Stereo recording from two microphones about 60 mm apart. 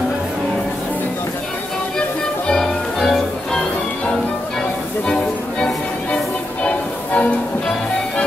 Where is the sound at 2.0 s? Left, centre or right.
Centre.